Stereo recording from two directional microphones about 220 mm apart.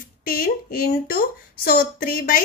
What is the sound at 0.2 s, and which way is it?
A woman's voice, 40° left (ahead or behind).